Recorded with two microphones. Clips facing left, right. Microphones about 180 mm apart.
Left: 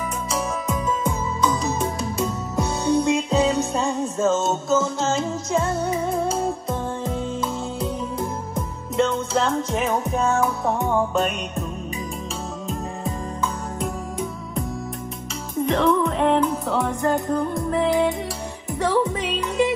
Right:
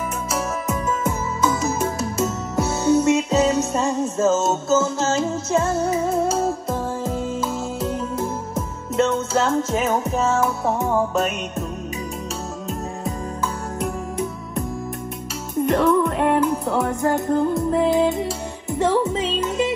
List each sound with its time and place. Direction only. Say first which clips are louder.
0.3 s music: right 1 dB; 5° right (ahead or behind)
13.7 s music: right 4 dB; 5° right (ahead or behind)
15.6 s music: right 2 dB; centre (ahead or behind)
17.7 s music: even; 20° right (ahead or behind)